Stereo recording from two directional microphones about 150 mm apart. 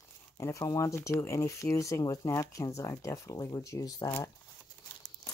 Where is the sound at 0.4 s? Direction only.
20° left (ahead or behind).